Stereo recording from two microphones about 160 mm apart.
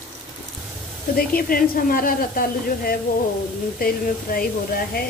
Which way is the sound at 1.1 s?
65° left (ahead or behind).